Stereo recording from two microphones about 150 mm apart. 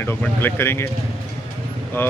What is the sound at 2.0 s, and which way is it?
Speech, 15° left (ahead or behind).